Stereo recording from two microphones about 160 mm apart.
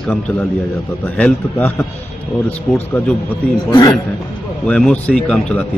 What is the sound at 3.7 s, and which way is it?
Speech, 25° left (ahead or behind).